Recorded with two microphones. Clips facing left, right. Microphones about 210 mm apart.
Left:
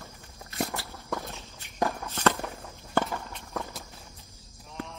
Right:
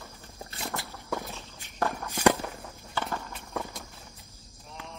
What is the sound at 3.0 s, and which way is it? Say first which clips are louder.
Walk: left 7 dB; 50° left (ahead or behind).